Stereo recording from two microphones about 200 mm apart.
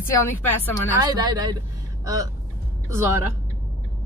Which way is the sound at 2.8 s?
15° right (ahead or behind).